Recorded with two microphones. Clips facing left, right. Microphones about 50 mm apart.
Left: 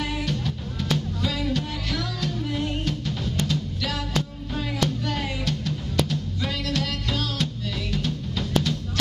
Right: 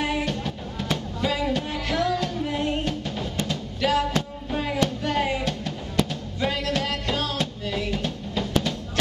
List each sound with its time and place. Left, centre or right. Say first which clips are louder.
0.0 s music: right 2 dB; right